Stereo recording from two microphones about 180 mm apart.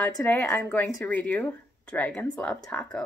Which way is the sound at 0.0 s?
10° left (ahead or behind).